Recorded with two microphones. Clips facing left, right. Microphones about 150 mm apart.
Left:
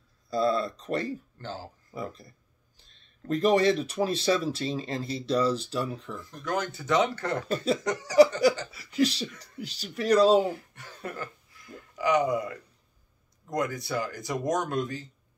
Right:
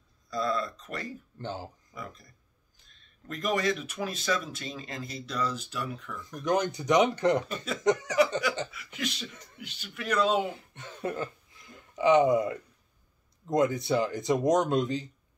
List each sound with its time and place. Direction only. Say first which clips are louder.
0.3 s speech: left 4 dB; 30° left (ahead or behind)
1.4 s speech: right 1 dB; 20° right (ahead or behind)
2.0 s speech: left 7 dB; 30° left (ahead or behind)
6.4 s speech: right 4 dB; 20° right (ahead or behind)
7.5 s speech: even; 35° left (ahead or behind)
10.5 s speech: left 3 dB; 20° right (ahead or behind)